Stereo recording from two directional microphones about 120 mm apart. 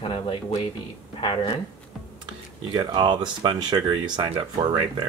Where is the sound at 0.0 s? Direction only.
45° left (ahead or behind).